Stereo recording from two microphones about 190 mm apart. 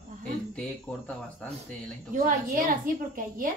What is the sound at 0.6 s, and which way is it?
Speech, 5° left (ahead or behind).